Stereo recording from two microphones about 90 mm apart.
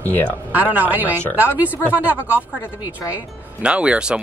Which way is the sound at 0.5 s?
20° right (ahead or behind).